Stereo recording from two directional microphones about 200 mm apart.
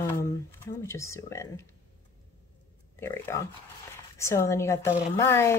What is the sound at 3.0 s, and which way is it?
Speech, 15° left (ahead or behind).